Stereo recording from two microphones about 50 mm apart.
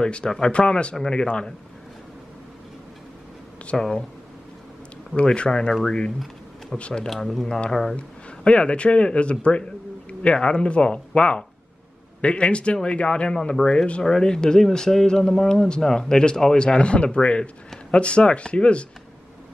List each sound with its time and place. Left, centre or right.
0.0 s speech: centre
3.7 s speech: centre
5.1 s speech: left
7.9 s speech: left